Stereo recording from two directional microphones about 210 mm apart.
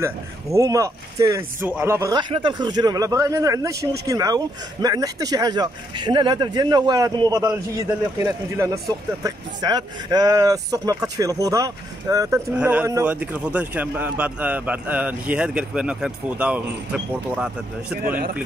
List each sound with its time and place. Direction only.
0.0 s a man's voice: 15° right (ahead or behind)
18.0 s speech: 45° right (ahead or behind)